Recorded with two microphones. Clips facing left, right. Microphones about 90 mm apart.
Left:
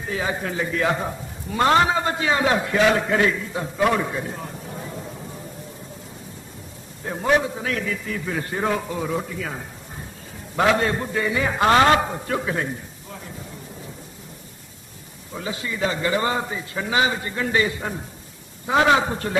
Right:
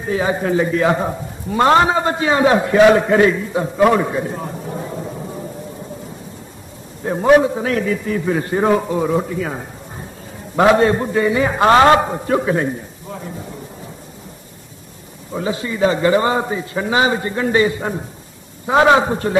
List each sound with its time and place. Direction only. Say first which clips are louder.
0.1 s a man's voice: right 9 dB; 30° right (ahead or behind)
7.4 s a man's voice: right 8 dB; 35° right (ahead or behind)
15.3 s a man's voice: right 7 dB; 30° right (ahead or behind)